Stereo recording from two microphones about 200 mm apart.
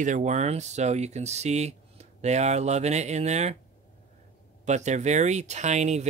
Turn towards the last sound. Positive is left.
turn(degrees=-35)  # may be behind; listen again after turning